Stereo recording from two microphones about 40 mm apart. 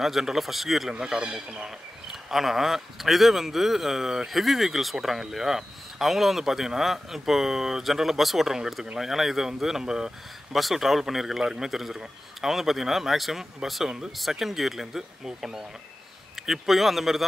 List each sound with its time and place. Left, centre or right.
0.0 s a man's voice: centre
0.9 s speech: centre
2.0 s a man's voice: centre
11.4 s speech: centre
11.7 s a man's voice: centre